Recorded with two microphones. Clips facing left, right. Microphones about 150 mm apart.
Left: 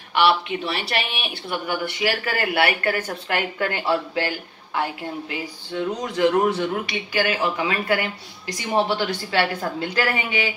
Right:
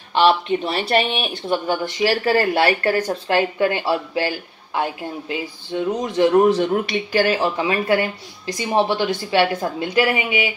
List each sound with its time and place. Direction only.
0.3 s speech: 40° right (ahead or behind)
3.1 s a woman's voice: 25° right (ahead or behind)